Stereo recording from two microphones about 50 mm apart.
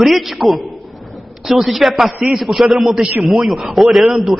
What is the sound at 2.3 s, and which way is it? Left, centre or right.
A man's voice, centre.